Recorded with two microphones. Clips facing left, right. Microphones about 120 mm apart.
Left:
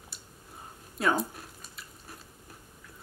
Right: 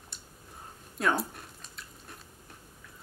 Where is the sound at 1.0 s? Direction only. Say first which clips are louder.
Left 1 dB; centre (ahead or behind).